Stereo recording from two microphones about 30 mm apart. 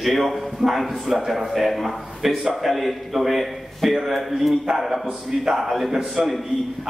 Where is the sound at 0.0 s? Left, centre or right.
Centre.